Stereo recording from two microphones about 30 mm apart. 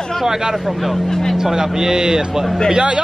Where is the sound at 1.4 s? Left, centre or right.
Centre.